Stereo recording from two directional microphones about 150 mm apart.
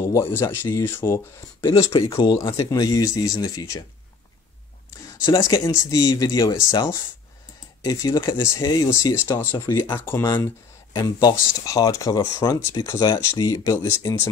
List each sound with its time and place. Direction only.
0.4 s speech: 15° left (ahead or behind)
1.7 s speech: 35° left (ahead or behind)
2.7 s speech: 25° left (ahead or behind)
5.2 s speech: 25° left (ahead or behind)
10.0 s speech: 20° left (ahead or behind)